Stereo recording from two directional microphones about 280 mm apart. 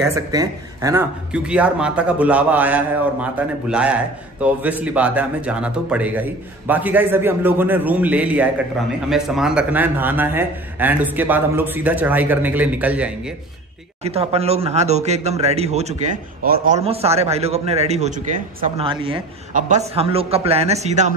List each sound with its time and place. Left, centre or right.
0.0 s a man's voice: centre
14.0 s speech: right